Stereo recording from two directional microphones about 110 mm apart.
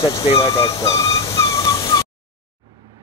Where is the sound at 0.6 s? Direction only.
30° left (ahead or behind).